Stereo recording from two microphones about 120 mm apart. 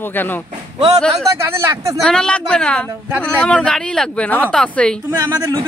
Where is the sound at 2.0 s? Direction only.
5° left (ahead or behind).